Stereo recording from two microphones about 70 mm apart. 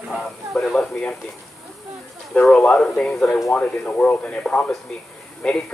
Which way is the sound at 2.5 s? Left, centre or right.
Centre.